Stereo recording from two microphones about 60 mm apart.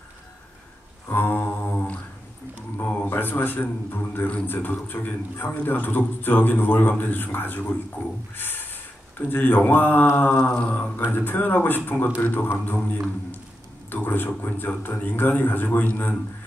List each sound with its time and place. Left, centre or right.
1.1 s a sound: left
3.1 s a man's voice: left
8.4 s a sound: left
9.3 s a man's voice: left
10.5 s mantra: left
11.1 s a man's voice: left
13.8 s a man's voice: left